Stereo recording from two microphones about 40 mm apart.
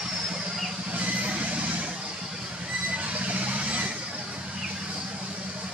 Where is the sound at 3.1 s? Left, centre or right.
Right.